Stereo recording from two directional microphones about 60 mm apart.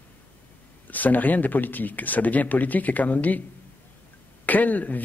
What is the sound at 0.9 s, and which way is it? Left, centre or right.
A man's voice, left.